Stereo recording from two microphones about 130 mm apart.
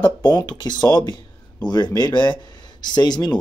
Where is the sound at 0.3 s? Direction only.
35° left (ahead or behind).